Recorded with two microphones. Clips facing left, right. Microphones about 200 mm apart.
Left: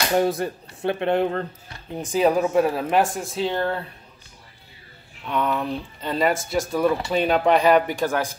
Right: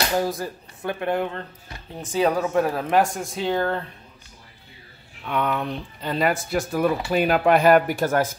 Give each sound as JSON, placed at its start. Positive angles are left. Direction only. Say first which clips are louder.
{"t": 0.2, "sound": "speech", "louder": "left 4 dB", "side_deg": 25}
{"t": 2.0, "sound": "speech", "louder": "left 2 dB", "side_deg": 10}
{"t": 5.2, "sound": "speech", "louder": "left 1 dB", "side_deg": 0}